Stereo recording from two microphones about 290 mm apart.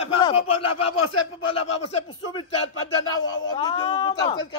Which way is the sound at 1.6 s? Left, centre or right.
Left.